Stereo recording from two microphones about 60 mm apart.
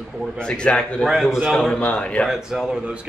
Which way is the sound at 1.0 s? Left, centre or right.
Centre.